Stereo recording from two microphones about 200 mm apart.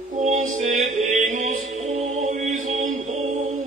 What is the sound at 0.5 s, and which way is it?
Music, 40° right (ahead or behind).